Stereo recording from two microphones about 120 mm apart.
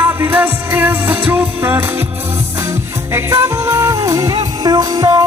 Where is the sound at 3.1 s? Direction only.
25° right (ahead or behind).